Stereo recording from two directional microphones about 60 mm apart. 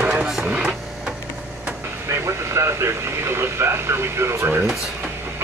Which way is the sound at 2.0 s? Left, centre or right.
Right.